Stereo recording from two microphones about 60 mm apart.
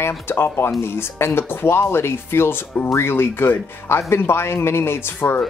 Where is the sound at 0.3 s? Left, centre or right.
Left.